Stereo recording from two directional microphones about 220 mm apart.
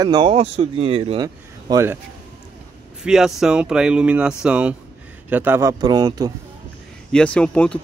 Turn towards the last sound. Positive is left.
turn(degrees=5)  # may be behind; listen again after turning